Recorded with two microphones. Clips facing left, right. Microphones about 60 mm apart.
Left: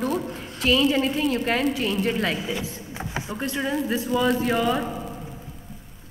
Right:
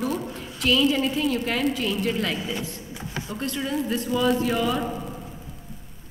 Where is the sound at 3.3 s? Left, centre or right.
Centre.